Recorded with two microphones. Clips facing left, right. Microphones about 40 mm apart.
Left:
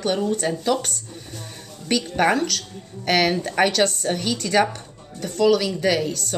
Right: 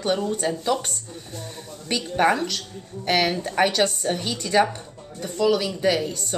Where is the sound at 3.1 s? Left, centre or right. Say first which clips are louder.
Left 2 dB; centre.